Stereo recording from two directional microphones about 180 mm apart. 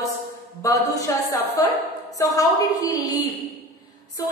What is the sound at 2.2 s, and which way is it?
Speech, 20° left (ahead or behind).